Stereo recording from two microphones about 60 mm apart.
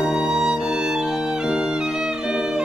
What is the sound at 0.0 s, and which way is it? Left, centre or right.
Music, centre.